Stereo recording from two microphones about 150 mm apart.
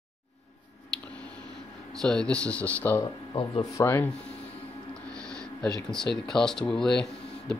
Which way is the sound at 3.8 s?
15° left (ahead or behind).